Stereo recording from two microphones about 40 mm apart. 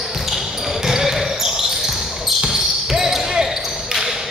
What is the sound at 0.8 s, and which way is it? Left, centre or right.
Basketball bounce, centre.